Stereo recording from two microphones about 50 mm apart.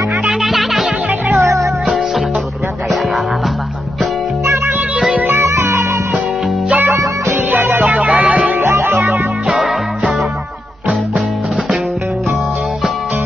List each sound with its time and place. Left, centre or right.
0.2 s music: centre
1.4 s music: right
5.3 s music: right
6.9 s music: right
8.0 s music: centre
8.5 s music: right
9.5 s music: centre